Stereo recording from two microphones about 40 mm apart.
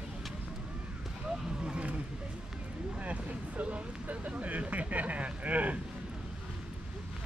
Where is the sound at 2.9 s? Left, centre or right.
Right.